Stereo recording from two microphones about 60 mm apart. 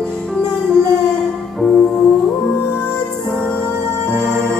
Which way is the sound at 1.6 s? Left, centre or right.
Centre.